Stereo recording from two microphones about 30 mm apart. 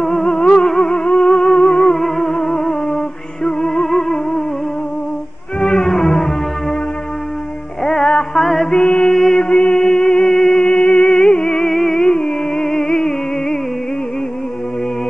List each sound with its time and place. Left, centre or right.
0.0 s music: centre
0.4 s music: left
5.6 s music: centre
7.8 s music: centre
9.4 s music: left
9.7 s music: centre
10.2 s music: centre
10.9 s music: left
11.6 s music: centre